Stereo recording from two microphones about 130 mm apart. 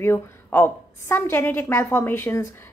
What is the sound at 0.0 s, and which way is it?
A woman's voice, 15° left (ahead or behind).